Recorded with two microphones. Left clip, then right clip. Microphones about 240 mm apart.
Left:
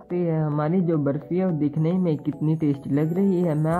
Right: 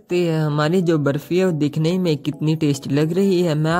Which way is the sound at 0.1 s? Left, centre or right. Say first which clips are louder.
Right 5 dB; right.